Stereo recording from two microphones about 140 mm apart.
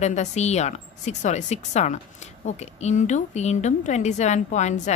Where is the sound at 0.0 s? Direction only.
55° left (ahead or behind).